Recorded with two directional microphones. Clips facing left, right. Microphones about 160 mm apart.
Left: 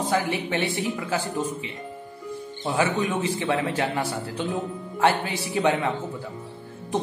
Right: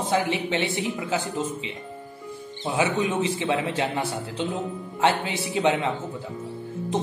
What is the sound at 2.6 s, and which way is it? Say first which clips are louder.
A man's voice: even; 20° right (ahead or behind).